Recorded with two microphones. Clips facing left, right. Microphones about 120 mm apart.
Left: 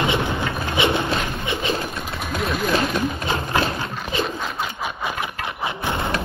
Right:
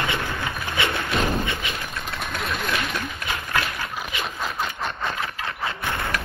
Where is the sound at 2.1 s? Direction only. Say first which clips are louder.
Left 4 dB; centre (ahead or behind).